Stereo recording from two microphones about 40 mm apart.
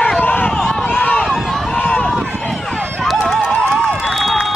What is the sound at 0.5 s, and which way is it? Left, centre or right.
Run, centre.